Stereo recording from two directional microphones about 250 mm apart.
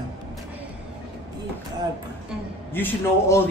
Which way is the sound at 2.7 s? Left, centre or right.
Centre.